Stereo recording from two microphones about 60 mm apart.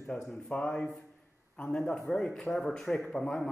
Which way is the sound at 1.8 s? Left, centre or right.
Centre.